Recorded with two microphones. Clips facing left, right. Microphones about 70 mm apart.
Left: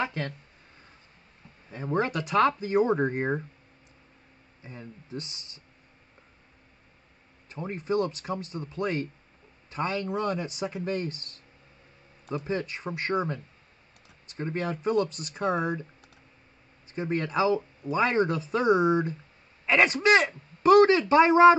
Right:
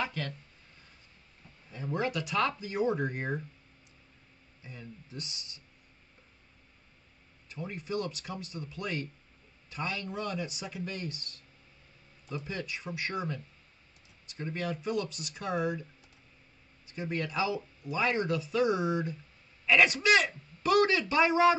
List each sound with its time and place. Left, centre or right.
0.0 s speech: left
1.7 s speech: left
4.6 s speech: left
7.4 s a man's voice: left
12.4 s speech: left
16.9 s speech: left